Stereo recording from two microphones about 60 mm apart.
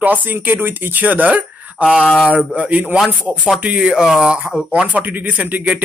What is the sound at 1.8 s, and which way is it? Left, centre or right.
Speech, centre.